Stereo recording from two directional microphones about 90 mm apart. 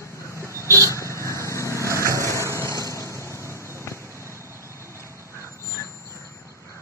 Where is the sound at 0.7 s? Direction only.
35° left (ahead or behind).